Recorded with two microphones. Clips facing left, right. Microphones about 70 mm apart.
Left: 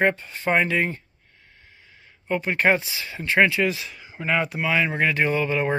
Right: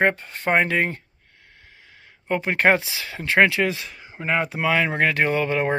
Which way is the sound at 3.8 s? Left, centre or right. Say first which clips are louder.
Even; right.